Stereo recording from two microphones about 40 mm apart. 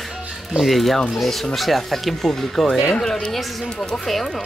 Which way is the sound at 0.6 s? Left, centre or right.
Centre.